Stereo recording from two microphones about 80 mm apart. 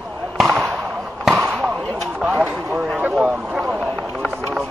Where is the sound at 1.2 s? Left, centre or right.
Centre.